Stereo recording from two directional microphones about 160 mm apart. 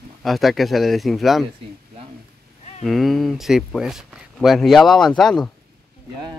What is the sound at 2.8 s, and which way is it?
Speech, centre (ahead or behind).